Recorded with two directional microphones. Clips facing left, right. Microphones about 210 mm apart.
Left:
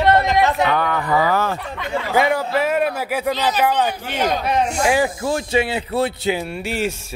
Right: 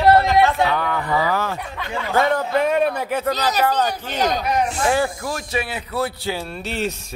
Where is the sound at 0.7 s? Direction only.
55° left (ahead or behind).